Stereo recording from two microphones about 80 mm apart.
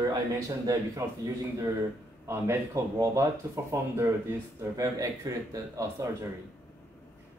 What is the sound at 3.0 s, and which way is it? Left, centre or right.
Speech, right.